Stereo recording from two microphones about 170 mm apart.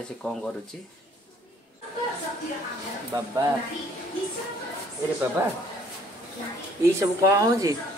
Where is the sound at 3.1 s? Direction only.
25° right (ahead or behind).